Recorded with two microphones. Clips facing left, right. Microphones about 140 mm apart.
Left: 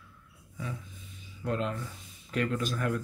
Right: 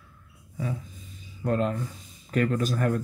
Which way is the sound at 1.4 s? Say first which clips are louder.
Right 6 dB; 45° right (ahead or behind).